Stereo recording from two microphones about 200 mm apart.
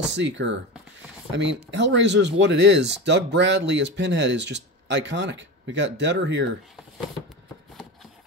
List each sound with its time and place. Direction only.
0.1 s speech: 65° right (ahead or behind)